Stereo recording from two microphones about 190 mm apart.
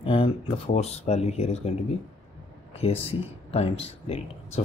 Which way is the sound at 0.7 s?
35° left (ahead or behind).